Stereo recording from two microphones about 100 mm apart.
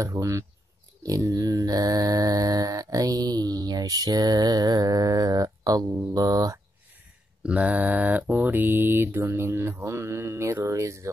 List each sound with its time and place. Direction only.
0.0 s mantra: 30° right (ahead or behind)
7.4 s mantra: 15° right (ahead or behind); by 11.1 s 30° right (ahead or behind)